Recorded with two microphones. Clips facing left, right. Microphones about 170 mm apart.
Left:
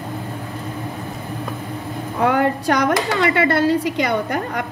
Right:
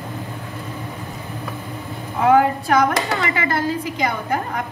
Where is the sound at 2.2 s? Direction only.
70° left (ahead or behind).